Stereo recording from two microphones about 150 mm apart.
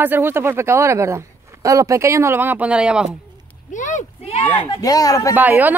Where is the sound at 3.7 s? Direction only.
55° left (ahead or behind).